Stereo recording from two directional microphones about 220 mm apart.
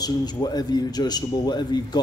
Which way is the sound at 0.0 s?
20° left (ahead or behind).